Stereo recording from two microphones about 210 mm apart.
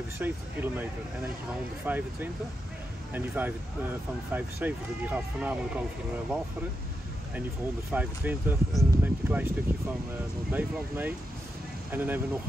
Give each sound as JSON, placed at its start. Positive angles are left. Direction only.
{"t": 0.2, "sound": "speech", "side_deg": -10}
{"t": 1.9, "sound": "speech", "side_deg": -10}
{"t": 7.9, "sound": "speech", "side_deg": -10}